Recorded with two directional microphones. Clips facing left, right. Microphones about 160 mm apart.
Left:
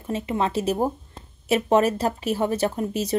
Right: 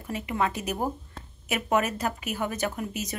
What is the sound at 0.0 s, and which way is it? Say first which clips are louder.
A woman's voice: left 4 dB; 25° left (ahead or behind).